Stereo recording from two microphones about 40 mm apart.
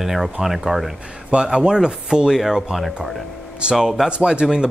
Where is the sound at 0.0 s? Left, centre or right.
Centre.